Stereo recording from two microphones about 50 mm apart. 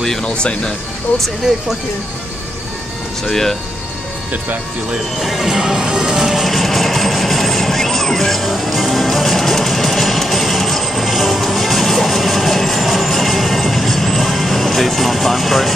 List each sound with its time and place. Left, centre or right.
0.2 s speech: left
1.5 s speech: centre
3.3 s speech: centre
5.2 s speech: centre
5.6 s music: centre
6.4 s music: centre